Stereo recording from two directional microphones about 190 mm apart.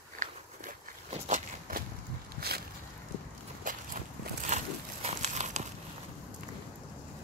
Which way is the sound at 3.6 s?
45° right (ahead or behind).